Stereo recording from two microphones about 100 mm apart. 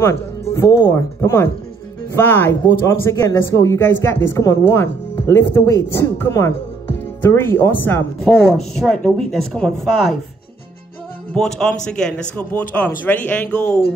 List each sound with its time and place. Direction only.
0.0 s speech: 30° left (ahead or behind)
8.5 s speech: 5° left (ahead or behind)
11.3 s speech: 5° left (ahead or behind)